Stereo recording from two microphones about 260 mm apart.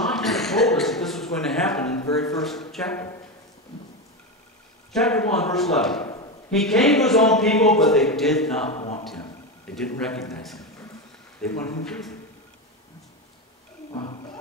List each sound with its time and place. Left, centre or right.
0.0 s a sound: centre
2.3 s speech: centre
4.9 s speech: centre
8.7 s a sound: left
9.8 s speech: centre
11.8 s speech: centre
13.9 s roaring cats: centre